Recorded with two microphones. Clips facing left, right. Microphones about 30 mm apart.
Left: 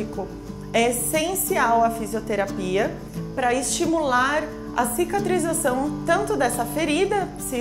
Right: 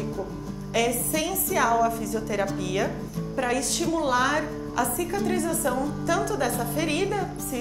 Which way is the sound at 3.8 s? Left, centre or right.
Centre.